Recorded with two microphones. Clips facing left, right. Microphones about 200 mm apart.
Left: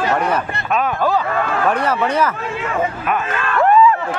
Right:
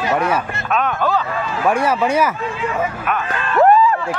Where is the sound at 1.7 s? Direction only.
10° right (ahead or behind).